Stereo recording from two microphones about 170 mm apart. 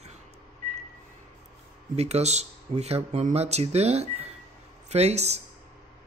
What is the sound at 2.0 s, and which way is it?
Speech, 40° right (ahead or behind).